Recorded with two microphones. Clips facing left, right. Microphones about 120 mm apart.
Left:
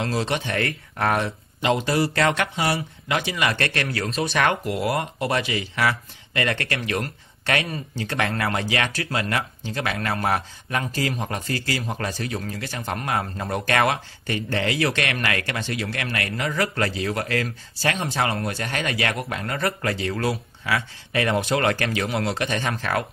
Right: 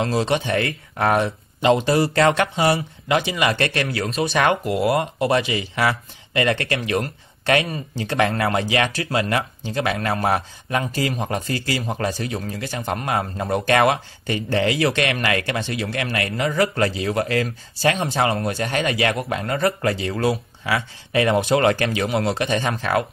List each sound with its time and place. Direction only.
0.0 s speech: 20° right (ahead or behind)